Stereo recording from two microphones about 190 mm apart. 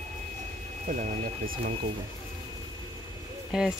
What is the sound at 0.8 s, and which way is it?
Speech, 40° right (ahead or behind).